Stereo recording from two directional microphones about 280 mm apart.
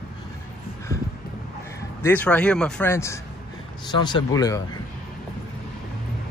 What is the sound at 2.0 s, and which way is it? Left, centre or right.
Speech, centre.